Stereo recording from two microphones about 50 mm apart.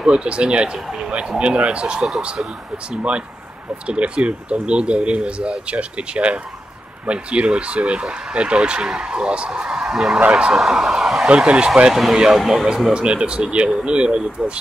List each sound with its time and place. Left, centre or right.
0.0 s speech: centre
1.4 s speech: right
3.8 s speech: right; by 11.2 s centre
11.2 s speech: right
11.9 s speech: centre
12.9 s speech: centre